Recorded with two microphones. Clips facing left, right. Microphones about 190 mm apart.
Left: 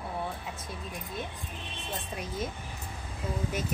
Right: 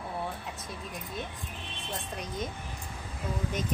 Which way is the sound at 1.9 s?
5° left (ahead or behind).